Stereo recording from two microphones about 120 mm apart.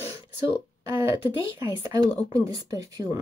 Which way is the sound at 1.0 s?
25° right (ahead or behind).